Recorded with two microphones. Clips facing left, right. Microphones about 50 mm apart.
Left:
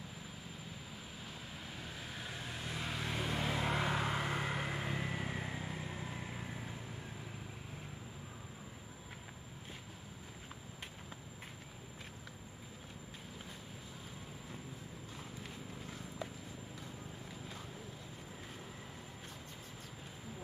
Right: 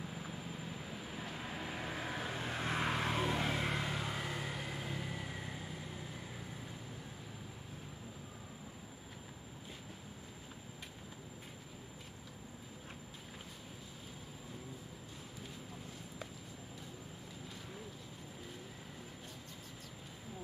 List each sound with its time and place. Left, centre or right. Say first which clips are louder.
1.2 s vehicle: right 7 dB; right
3.7 s vehicle: left 4 dB; left